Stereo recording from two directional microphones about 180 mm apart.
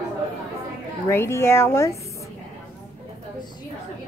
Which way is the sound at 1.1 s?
15° left (ahead or behind).